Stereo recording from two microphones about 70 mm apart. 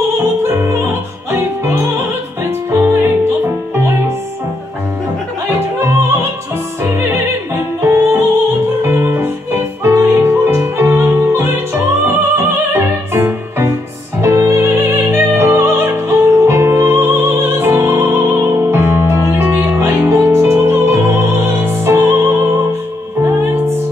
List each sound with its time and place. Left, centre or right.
0.4 s opera: right
2.7 s music: right
5.8 s opera: right
7.8 s music: right